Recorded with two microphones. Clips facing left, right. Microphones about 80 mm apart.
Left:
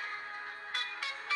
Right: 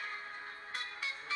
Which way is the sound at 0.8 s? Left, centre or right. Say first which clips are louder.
Left 2 dB; left.